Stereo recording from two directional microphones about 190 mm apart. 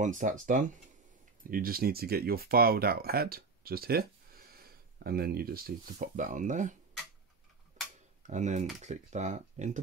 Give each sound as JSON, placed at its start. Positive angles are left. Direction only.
{"t": 0.0, "sound": "speech", "side_deg": -40}
{"t": 7.8, "sound": "tick-tock", "side_deg": -40}
{"t": 8.2, "sound": "speech", "side_deg": -40}